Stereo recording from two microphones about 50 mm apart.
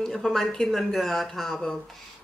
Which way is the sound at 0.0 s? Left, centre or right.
Centre.